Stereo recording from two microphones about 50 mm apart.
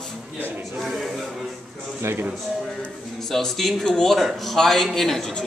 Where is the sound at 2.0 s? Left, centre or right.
Right.